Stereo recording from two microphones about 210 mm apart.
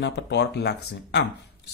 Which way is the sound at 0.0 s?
55° left (ahead or behind).